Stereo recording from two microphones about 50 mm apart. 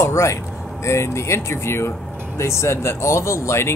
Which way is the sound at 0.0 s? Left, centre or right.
Left.